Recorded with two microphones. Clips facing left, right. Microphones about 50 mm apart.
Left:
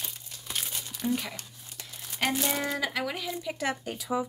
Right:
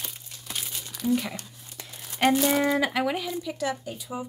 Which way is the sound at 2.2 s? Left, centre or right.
Right.